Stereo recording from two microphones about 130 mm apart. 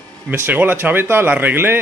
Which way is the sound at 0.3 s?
15° right (ahead or behind).